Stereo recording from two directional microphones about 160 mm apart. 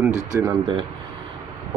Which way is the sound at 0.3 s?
20° right (ahead or behind).